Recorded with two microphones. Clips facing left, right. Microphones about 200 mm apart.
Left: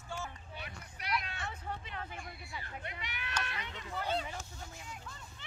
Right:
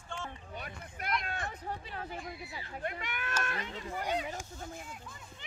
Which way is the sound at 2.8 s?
50° right (ahead or behind).